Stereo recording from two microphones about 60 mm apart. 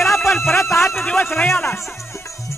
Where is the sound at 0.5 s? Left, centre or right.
Left.